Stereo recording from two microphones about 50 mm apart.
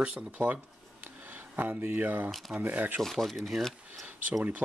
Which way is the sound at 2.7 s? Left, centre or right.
Right.